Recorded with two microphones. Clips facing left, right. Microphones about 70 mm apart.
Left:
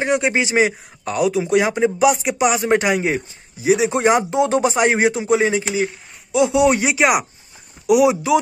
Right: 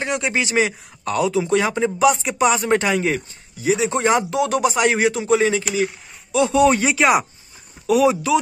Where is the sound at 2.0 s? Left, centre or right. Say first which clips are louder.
Right 1 dB; centre.